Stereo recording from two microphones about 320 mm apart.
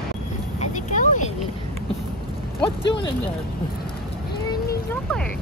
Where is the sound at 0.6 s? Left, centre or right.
Left.